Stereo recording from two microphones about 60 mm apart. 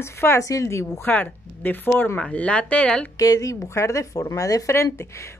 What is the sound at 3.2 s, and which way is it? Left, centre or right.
Speech, left.